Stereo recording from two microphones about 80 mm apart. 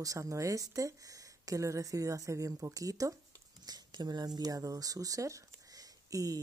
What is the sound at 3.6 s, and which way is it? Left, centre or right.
Speech, right.